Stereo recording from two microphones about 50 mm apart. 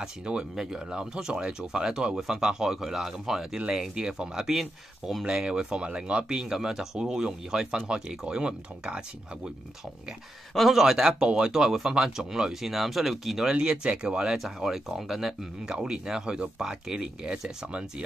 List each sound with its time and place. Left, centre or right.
0.0 s speech: centre
10.5 s speech: centre
11.5 s speech: centre
13.5 s speech: centre